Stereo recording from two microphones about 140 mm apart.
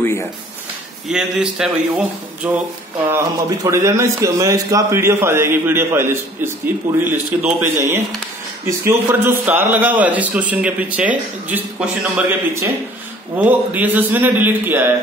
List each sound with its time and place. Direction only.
0.0 s speech: 15° left (ahead or behind)
1.0 s speech: 5° right (ahead or behind)
3.1 s a man's voice: 25° right (ahead or behind)
13.4 s a man's voice: 10° right (ahead or behind)